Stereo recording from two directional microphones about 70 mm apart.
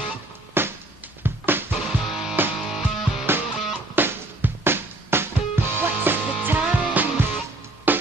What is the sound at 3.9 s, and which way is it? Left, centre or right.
Music, right.